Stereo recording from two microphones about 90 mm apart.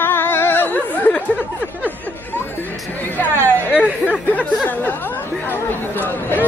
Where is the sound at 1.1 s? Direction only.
20° left (ahead or behind).